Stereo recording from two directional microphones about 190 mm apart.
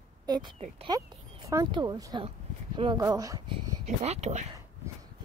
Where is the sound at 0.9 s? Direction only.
20° right (ahead or behind).